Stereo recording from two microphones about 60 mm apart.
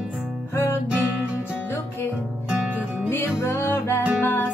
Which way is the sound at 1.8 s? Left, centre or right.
Left.